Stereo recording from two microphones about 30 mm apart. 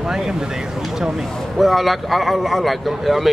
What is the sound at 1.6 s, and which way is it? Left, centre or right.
Speech, centre.